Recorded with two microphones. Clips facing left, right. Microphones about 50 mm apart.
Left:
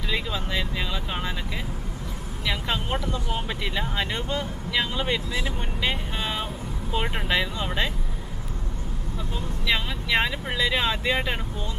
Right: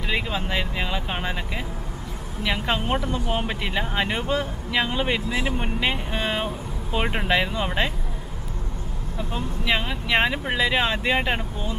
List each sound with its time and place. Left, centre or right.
0.1 s speech: right
2.4 s speech: centre
9.3 s speech: centre